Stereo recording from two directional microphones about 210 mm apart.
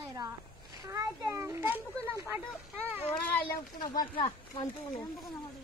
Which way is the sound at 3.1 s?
5° left (ahead or behind).